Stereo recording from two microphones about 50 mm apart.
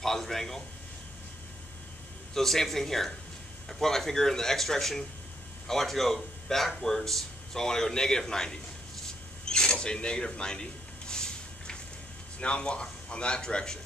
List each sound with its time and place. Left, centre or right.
0.0 s speech: centre
2.3 s a man's voice: centre
9.5 s a sound: centre
12.4 s speech: left